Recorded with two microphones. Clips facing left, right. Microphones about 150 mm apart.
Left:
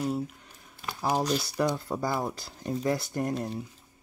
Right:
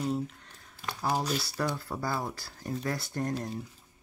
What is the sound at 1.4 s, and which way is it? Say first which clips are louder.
Speech: left 5 dB; 15° left (ahead or behind).